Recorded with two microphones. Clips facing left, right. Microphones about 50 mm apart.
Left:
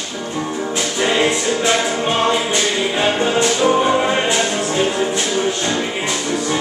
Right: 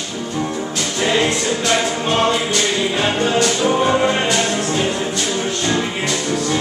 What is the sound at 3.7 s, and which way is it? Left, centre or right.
Music, centre.